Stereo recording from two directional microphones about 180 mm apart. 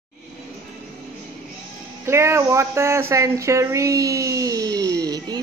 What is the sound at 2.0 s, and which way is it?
A woman's voice, 15° right (ahead or behind).